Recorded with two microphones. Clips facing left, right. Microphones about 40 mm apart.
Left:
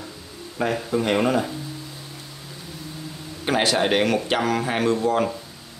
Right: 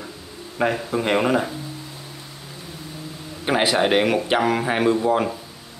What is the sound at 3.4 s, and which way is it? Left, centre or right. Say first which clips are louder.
A man's voice: right 2 dB; centre.